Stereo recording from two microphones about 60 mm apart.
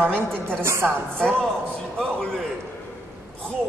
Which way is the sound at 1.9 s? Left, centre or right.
Centre.